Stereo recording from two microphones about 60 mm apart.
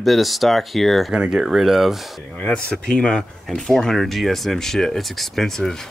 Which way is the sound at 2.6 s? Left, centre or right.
Centre.